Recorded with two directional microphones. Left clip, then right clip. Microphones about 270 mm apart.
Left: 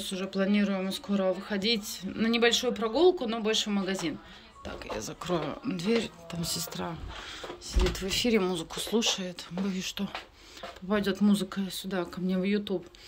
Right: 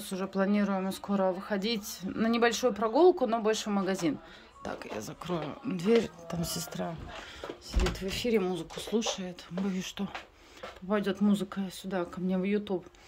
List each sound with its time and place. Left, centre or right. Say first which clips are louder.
0.0 s speech: left 1 dB; centre